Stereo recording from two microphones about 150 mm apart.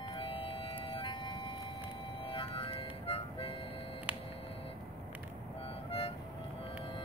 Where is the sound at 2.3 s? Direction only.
35° left (ahead or behind).